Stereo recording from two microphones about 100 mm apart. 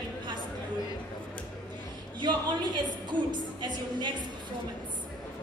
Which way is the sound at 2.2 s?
50° right (ahead or behind).